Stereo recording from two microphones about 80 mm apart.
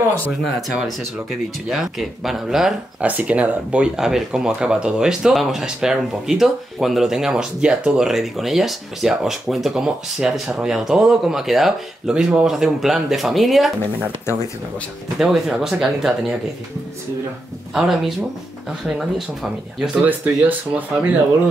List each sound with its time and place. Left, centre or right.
0.6 s speech: centre
3.0 s speech: centre
15.1 s speech: centre
17.7 s speech: centre
20.1 s speech: right